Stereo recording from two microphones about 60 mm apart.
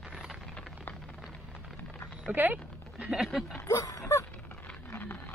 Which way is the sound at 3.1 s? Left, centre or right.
Centre.